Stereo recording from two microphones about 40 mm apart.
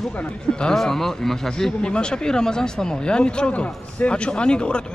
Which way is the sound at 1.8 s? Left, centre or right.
Left.